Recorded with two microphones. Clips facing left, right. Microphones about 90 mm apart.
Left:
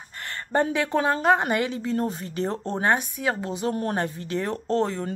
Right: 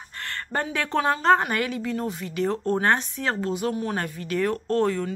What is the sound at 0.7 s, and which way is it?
A woman's voice, 15° left (ahead or behind).